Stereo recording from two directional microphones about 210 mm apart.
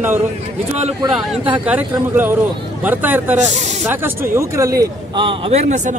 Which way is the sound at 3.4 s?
35° right (ahead or behind).